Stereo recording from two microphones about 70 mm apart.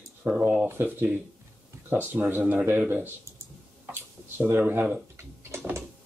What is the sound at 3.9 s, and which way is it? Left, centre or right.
Tick-tock, right.